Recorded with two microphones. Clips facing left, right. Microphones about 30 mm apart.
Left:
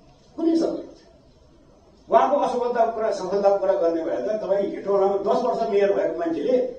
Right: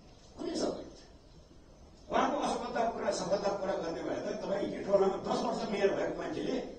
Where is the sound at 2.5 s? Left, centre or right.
Centre.